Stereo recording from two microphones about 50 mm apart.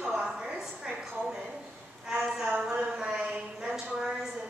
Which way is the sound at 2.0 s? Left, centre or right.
Centre.